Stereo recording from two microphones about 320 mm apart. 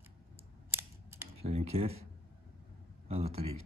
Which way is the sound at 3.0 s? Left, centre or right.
Centre.